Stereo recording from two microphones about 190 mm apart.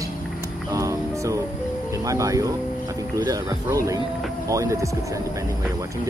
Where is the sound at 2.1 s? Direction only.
15° right (ahead or behind).